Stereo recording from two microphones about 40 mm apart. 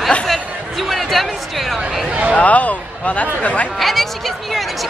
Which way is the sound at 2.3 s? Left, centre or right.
Left.